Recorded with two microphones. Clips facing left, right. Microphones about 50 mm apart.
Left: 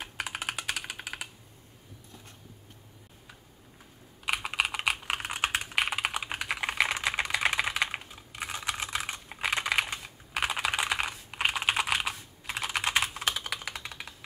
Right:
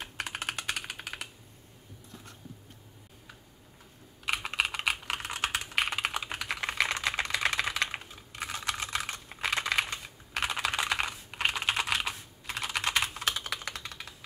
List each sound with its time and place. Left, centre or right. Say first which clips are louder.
0.0 s typing: left 1 dB; centre
4.3 s computer keyboard: left 1 dB; centre
5.0 s typing: left 2 dB; centre
5.8 s typing: even; centre
10.0 s computer keyboard: left 2 dB; centre
11.4 s typing: left 2 dB; centre
13.8 s computer keyboard: left 1 dB; centre